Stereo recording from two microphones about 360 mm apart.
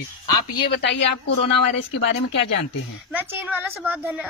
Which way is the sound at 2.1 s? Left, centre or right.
Left.